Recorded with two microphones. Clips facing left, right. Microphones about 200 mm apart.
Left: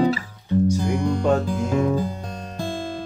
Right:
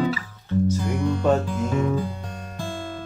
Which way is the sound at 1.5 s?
40° left (ahead or behind).